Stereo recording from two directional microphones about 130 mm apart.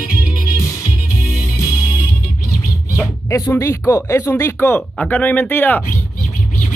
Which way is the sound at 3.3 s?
20° left (ahead or behind).